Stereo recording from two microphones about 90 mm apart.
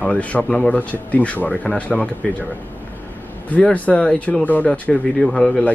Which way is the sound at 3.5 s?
15° left (ahead or behind).